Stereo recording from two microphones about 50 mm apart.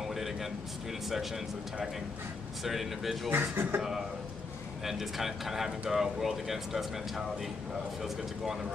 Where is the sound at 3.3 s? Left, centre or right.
Right.